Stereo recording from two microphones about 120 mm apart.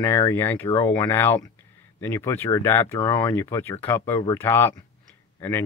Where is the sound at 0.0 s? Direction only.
25° left (ahead or behind).